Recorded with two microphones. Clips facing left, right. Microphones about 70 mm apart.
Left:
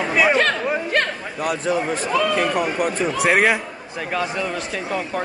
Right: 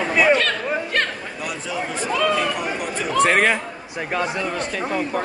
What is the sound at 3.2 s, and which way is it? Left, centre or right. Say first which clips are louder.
Speech: even; centre.